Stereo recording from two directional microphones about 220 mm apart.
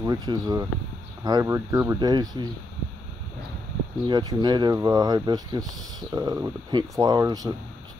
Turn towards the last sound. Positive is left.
turn(degrees=-20)  # may be behind; listen again after turning